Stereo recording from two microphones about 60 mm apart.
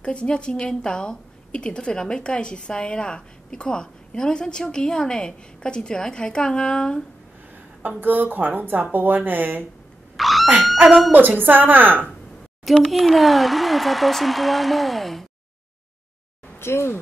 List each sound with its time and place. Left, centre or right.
0.0 s a woman's voice: centre
8.0 s a woman's voice: right
10.1 s owl: centre
11.1 s a woman's voice: right
12.9 s a woman's voice: centre
16.5 s speech: left